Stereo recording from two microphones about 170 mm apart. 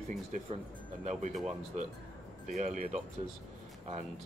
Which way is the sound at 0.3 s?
45° right (ahead or behind).